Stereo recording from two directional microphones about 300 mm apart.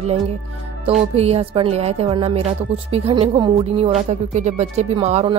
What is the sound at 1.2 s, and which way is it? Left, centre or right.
Speech, centre.